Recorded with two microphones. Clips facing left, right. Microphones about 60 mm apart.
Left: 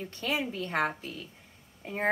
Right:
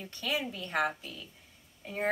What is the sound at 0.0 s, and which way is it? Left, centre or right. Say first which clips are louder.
Speech: left 2 dB; left.